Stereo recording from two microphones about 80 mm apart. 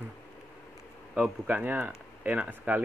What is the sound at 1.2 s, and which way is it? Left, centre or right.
Speech, right.